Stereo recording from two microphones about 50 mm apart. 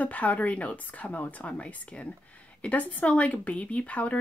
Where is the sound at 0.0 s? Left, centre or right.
Left.